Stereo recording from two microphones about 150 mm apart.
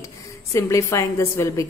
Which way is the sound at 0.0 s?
20° left (ahead or behind).